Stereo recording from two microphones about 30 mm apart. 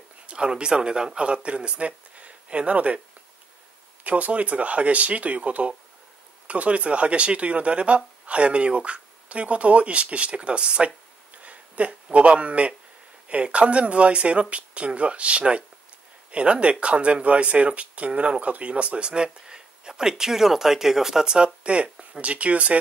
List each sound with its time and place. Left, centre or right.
0.3 s speech: right
4.0 s speech: right
11.3 s speech: right; by 21.3 s centre
21.6 s speech: right
22.2 s speech: right